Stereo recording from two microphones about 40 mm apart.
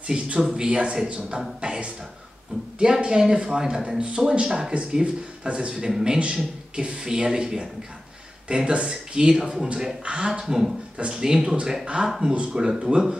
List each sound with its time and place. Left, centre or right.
0.0 s speech: right
0.4 s speech: centre
0.7 s speech: right
11.8 s speech: right